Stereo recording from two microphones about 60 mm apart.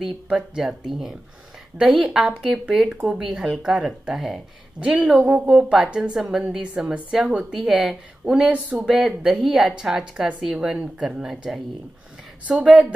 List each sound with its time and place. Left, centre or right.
0.0 s a woman's voice: centre
3.2 s a woman's voice: centre
5.2 s speech: right
5.7 s a woman's voice: centre
12.4 s speech: right